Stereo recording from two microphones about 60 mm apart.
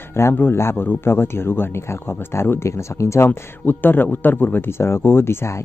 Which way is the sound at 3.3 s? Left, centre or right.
Left.